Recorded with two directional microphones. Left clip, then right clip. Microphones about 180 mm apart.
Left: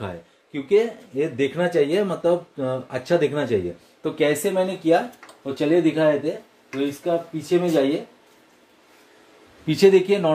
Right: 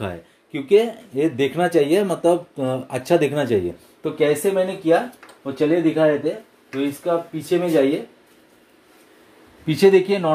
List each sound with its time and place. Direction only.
0.0 s speech: 30° right (ahead or behind); by 6.0 s centre (ahead or behind)
6.7 s speech: 10° right (ahead or behind)
9.7 s speech: 10° right (ahead or behind)